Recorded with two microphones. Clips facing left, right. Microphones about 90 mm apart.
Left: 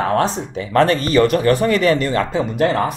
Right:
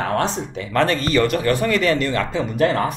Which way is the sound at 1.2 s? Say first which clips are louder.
Left 4 dB; 35° left (ahead or behind).